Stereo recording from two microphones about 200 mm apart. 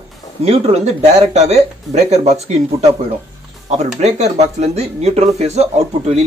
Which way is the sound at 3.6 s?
35° right (ahead or behind).